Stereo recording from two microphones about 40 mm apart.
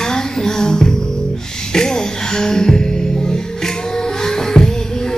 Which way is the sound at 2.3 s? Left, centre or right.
Centre.